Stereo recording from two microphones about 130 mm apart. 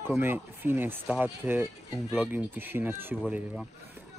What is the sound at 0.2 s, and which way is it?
Speech, 15° right (ahead or behind).